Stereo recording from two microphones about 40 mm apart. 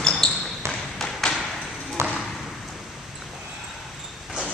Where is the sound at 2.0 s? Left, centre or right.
Right.